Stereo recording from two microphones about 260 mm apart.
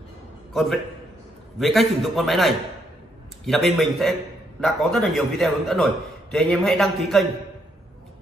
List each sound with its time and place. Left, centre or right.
0.5 s a man's voice: centre